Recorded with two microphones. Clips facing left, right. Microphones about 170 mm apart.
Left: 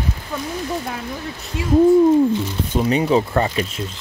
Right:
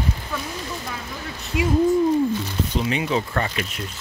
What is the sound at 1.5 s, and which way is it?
Speech, 10° right (ahead or behind).